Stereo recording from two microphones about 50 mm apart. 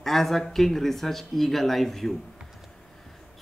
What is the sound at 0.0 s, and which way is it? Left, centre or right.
Speech, centre.